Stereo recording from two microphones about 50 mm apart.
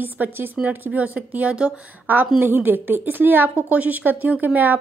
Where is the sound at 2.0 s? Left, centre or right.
Right.